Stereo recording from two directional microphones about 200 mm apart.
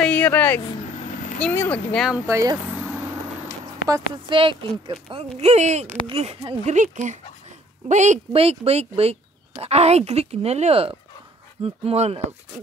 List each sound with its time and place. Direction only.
0.0 s vehicle: 5° left (ahead or behind)
1.4 s speech: 10° left (ahead or behind)
2.2 s speech: 15° right (ahead or behind)
3.9 s speech: 25° right (ahead or behind)